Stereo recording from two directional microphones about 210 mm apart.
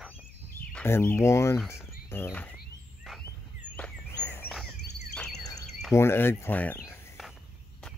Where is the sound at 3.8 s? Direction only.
10° left (ahead or behind).